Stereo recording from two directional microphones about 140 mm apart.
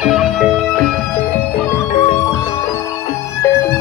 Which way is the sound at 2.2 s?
25° left (ahead or behind).